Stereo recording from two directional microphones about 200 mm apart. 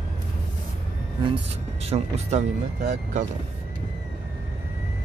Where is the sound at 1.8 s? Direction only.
30° right (ahead or behind).